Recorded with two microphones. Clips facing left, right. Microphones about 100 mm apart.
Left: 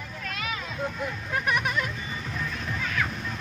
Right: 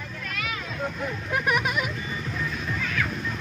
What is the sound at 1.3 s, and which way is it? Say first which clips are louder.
Speech: right 2 dB; 15° right (ahead or behind).